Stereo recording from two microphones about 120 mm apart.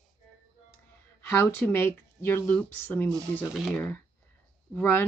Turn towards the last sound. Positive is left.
turn(degrees=15)  # may be behind; listen again after turning